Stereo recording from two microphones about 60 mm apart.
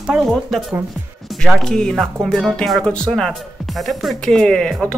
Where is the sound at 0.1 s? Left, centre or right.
Centre.